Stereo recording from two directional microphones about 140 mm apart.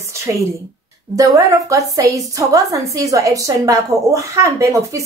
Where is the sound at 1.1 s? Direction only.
25° right (ahead or behind).